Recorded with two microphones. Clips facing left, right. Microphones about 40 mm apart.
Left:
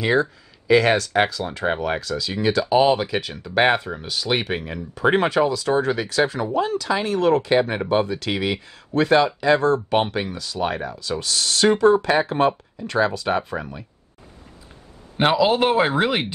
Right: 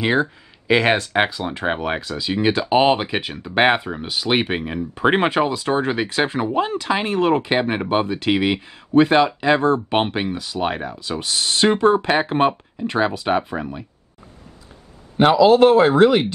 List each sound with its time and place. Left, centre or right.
0.0 s speech: right
15.1 s speech: centre